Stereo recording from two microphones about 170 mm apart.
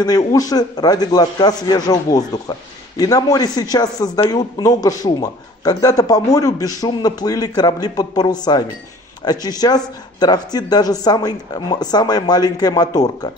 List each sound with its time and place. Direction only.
0.3 s a man's voice: 20° left (ahead or behind)